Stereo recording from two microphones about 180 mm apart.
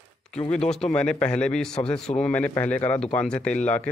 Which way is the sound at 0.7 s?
5° left (ahead or behind).